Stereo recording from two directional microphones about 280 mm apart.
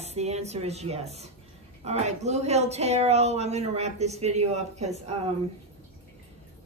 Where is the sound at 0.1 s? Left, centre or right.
Right.